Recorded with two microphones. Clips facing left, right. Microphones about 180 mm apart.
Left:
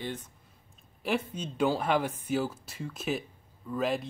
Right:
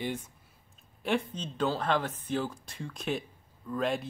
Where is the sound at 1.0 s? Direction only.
5° left (ahead or behind).